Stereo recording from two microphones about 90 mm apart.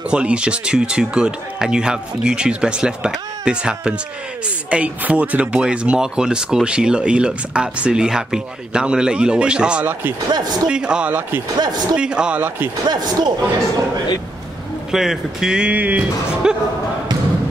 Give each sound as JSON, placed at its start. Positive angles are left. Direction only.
{"t": 0.1, "sound": "speech", "side_deg": -10}
{"t": 10.3, "sound": "speech", "side_deg": -50}
{"t": 10.7, "sound": "speech", "side_deg": -10}
{"t": 12.8, "sound": "speech", "side_deg": -50}
{"t": 14.9, "sound": "speech", "side_deg": -5}
{"t": 16.4, "sound": "a sound", "side_deg": -10}